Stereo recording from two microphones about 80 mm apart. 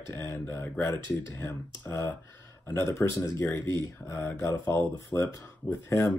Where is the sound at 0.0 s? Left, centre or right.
Left.